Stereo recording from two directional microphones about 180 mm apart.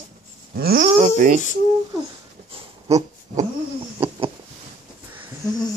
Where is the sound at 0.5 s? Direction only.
50° right (ahead or behind).